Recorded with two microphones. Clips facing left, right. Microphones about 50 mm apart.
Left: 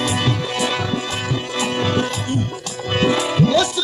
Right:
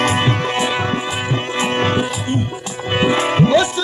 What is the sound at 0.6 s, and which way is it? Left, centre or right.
Music, right.